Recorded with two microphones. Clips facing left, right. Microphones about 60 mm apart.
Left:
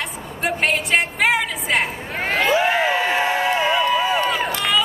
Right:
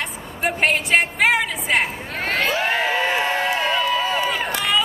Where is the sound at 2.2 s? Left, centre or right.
Centre.